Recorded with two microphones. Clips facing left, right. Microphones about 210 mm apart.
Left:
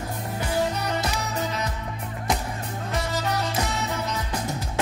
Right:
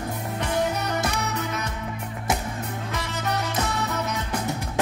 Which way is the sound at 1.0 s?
60° right (ahead or behind).